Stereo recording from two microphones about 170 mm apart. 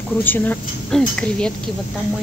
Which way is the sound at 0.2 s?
10° left (ahead or behind).